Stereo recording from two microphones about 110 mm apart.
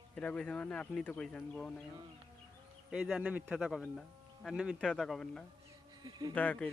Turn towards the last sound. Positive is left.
turn(degrees=15)  # may be behind; listen again after turning